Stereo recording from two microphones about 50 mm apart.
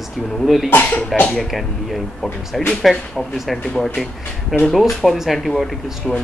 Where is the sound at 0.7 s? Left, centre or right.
Left.